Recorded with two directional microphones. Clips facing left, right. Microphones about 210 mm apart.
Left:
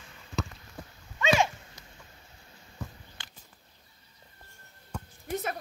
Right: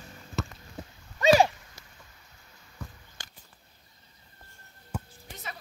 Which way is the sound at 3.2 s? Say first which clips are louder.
Right 2 dB; 45° right (ahead or behind).